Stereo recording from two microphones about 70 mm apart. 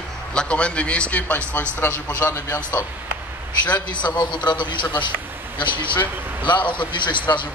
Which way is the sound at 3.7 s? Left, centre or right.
Left.